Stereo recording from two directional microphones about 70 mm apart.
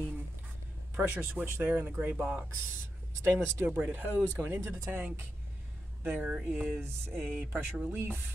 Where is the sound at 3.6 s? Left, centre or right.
Right.